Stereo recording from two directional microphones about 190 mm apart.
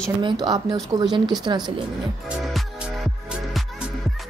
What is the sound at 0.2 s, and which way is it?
Speech, 25° right (ahead or behind).